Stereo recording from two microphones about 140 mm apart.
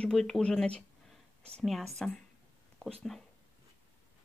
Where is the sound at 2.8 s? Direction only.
Centre (ahead or behind).